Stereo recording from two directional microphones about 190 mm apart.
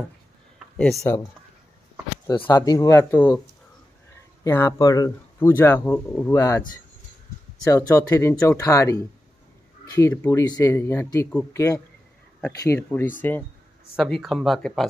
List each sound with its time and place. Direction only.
0.7 s speech: 5° left (ahead or behind)
2.4 s speech: 20° left (ahead or behind)
4.5 s speech: 15° left (ahead or behind)
7.6 s speech: 15° left (ahead or behind)